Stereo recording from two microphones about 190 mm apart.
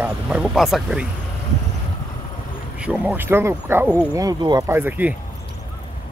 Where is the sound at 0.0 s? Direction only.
5° right (ahead or behind).